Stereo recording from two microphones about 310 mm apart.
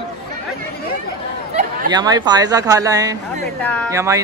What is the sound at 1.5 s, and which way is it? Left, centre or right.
Speech, centre.